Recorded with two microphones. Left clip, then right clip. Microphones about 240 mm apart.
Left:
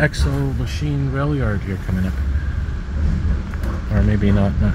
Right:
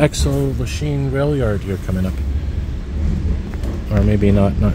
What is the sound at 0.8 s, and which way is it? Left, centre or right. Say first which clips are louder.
Speech: right 4 dB; right.